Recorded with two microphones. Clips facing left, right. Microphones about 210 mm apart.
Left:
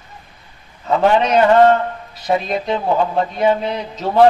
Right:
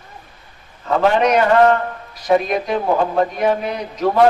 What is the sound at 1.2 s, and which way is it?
Speech, 25° left (ahead or behind).